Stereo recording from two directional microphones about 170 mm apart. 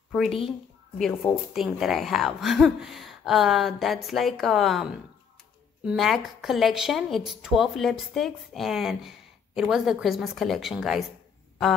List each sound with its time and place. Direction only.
0.1 s a woman's voice: centre (ahead or behind)